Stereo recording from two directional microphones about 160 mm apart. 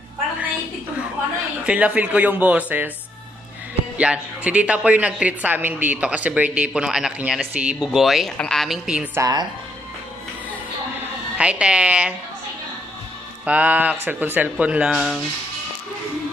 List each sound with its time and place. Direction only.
1.7 s a woman's voice: 10° right (ahead or behind)
4.0 s a woman's voice: 5° right (ahead or behind)
9.2 s speech: 25° right (ahead or behind)
11.3 s a woman's voice: 5° right (ahead or behind)
13.5 s a woman's voice: 10° right (ahead or behind)